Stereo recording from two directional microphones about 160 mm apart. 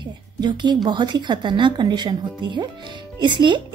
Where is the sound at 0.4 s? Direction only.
25° right (ahead or behind).